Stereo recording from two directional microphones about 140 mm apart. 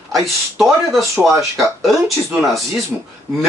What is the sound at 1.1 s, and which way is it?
Speech, 20° right (ahead or behind).